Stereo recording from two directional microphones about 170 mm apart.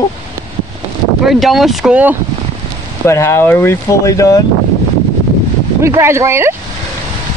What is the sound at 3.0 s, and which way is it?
Speech, 15° left (ahead or behind).